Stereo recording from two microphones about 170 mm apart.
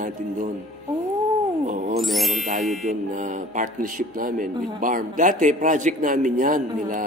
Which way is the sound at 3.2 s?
50° right (ahead or behind).